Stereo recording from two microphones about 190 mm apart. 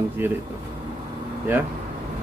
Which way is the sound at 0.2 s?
10° right (ahead or behind).